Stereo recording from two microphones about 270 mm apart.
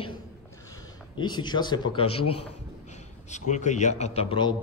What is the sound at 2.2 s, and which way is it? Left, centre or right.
Speech, left.